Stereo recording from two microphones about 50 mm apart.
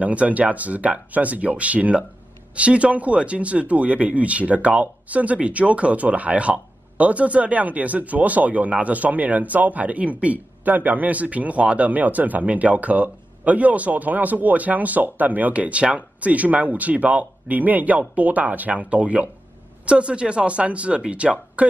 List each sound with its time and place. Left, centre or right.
0.0 s speech: right